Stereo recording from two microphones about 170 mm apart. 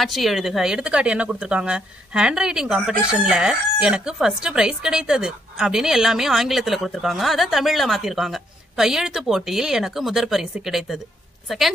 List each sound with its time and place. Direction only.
0.0 s speech: centre (ahead or behind)